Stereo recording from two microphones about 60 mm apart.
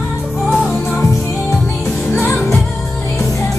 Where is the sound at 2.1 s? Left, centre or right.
Left.